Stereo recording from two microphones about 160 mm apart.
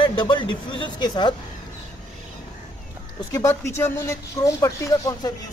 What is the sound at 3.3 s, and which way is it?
Speech, 15° left (ahead or behind).